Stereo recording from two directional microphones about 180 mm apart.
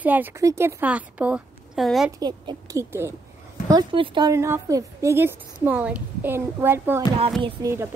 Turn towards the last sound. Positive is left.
turn(degrees=-15)  # may be behind; listen again after turning